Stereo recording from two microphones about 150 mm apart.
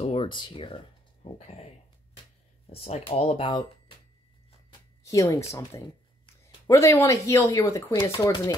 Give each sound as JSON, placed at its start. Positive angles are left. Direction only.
{"t": 0.0, "sound": "speech", "side_deg": 40}
{"t": 5.0, "sound": "speech", "side_deg": 20}